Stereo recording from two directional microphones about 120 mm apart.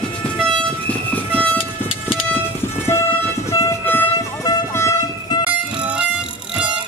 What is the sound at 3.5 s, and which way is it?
Vehicle, 25° left (ahead or behind).